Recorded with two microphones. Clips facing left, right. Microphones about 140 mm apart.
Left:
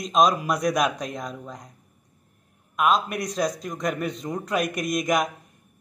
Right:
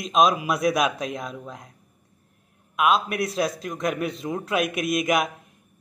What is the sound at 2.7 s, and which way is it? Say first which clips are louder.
Speech: right 1 dB; 5° right (ahead or behind).